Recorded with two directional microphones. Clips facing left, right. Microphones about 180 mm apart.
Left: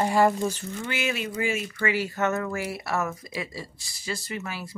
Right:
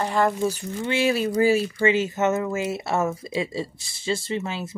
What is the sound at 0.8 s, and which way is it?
Speech, 30° right (ahead or behind).